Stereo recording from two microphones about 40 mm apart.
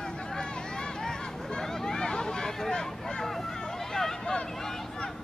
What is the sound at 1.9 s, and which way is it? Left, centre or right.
Vehicle, centre.